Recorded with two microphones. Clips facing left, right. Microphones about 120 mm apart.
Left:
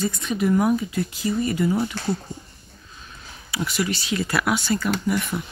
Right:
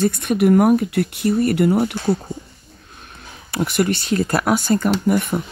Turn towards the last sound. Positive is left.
turn(degrees=-50)  # may be behind; listen again after turning